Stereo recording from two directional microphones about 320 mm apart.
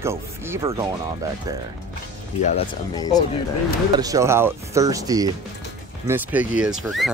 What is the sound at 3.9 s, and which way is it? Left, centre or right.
Speech, centre.